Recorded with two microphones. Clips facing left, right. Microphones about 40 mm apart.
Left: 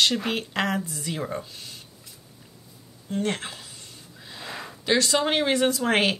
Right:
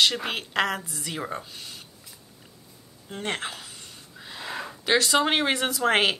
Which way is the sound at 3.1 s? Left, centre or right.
Centre.